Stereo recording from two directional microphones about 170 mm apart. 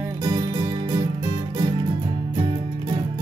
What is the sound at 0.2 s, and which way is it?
Music, 25° right (ahead or behind).